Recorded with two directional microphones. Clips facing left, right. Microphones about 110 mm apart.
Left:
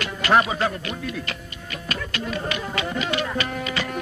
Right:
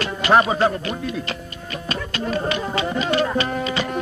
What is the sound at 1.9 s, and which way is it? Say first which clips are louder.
Music: right 4 dB; 30° right (ahead or behind).